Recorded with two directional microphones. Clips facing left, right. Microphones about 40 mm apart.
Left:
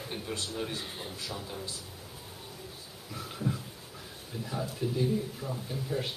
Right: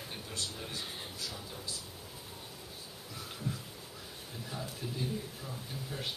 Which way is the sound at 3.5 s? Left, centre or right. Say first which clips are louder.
Left 6 dB; left.